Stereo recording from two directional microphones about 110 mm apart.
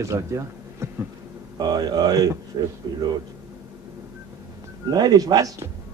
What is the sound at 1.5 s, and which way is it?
A man's voice, 40° right (ahead or behind).